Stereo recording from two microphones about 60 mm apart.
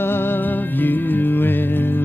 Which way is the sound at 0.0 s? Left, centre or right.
Left.